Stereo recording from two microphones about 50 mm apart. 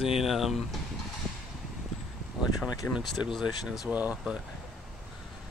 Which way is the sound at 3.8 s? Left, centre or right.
Right.